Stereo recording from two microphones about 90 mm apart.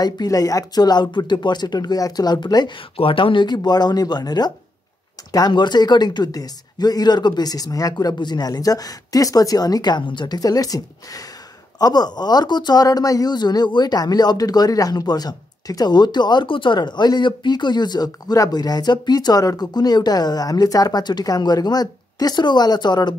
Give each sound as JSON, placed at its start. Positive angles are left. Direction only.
{"t": 0.0, "sound": "speech", "side_deg": 45}
{"t": 3.0, "sound": "speech", "side_deg": 75}
{"t": 5.5, "sound": "speech", "side_deg": 55}